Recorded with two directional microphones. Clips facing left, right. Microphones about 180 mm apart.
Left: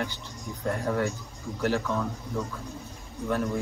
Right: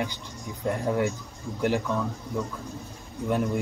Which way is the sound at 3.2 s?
15° right (ahead or behind).